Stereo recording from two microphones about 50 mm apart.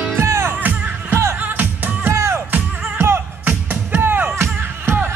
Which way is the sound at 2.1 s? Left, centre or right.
Right.